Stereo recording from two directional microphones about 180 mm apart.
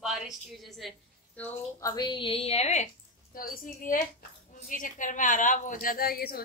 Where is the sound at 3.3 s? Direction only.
50° left (ahead or behind).